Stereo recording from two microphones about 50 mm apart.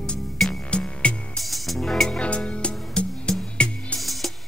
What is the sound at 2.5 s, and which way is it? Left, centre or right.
Music, left.